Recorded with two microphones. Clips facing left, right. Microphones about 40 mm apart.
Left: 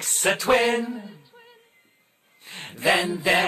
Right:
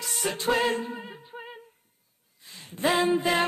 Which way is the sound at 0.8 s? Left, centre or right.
Right.